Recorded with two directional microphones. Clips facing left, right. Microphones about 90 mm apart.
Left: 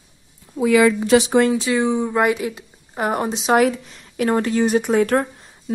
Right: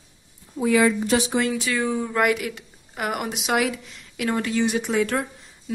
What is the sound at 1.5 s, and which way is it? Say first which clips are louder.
Speech: left 5 dB; 25° left (ahead or behind).